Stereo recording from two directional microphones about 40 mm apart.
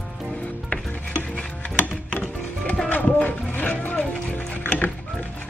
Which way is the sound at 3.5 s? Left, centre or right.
Left.